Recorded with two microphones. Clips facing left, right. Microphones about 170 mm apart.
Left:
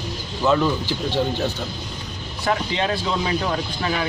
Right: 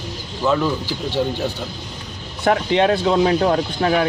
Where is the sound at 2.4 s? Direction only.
60° right (ahead or behind).